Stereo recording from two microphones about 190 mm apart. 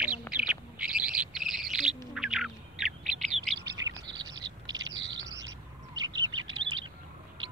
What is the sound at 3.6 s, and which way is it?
Bird, 20° right (ahead or behind).